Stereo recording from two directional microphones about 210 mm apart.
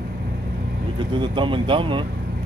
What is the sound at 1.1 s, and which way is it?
Speech, 20° right (ahead or behind).